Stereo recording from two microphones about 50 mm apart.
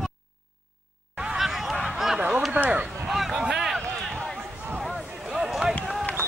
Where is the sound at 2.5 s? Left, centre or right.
Right.